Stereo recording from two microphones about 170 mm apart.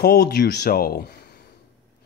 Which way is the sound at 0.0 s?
70° left (ahead or behind).